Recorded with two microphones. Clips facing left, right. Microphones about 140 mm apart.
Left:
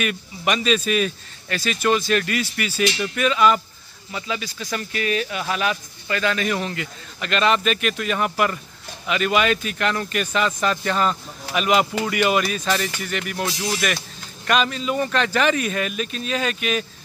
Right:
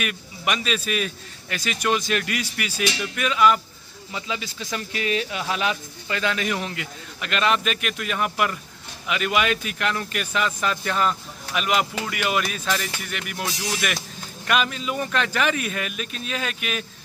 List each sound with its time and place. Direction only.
0.0 s a man's voice: 5° right (ahead or behind)
4.1 s a man's voice: 20° right (ahead or behind)